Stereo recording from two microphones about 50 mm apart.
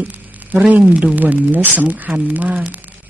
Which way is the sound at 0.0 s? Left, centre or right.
Right.